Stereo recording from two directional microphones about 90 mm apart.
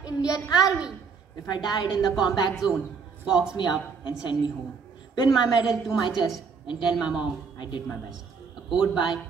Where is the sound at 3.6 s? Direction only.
65° left (ahead or behind).